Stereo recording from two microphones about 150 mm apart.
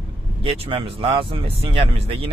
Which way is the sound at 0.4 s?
35° right (ahead or behind).